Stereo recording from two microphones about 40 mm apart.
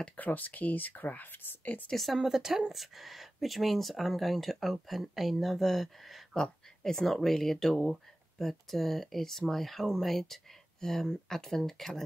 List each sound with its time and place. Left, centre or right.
0.2 s speech: left
2.1 s a woman's voice: centre
6.3 s speech: centre